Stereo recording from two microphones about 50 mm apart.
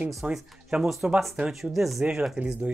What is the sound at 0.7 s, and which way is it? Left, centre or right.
Speech, centre.